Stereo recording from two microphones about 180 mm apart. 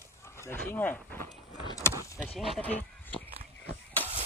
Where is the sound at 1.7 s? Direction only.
15° left (ahead or behind).